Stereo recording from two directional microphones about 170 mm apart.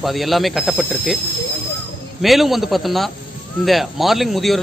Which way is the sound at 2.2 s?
Centre (ahead or behind).